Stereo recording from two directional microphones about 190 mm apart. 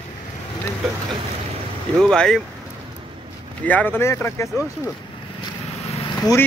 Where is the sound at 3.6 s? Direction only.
10° left (ahead or behind).